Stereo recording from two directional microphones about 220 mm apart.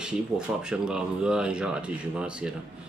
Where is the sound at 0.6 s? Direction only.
5° right (ahead or behind).